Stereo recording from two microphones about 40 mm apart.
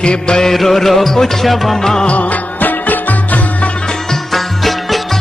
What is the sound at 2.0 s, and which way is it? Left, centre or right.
Music, left.